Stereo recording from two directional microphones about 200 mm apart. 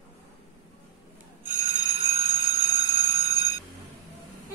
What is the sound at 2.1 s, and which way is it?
Bicycle bell, 30° right (ahead or behind).